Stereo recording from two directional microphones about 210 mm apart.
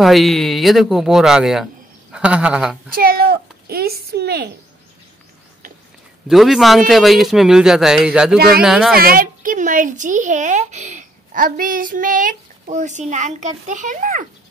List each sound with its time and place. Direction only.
0.0 s a man's voice: centre (ahead or behind)
2.9 s a child's voice: 45° right (ahead or behind)
6.2 s a man's voice: centre (ahead or behind)
8.4 s a child's voice: 45° right (ahead or behind)
8.6 s a man's voice: centre (ahead or behind)
8.9 s speech: 45° right (ahead or behind)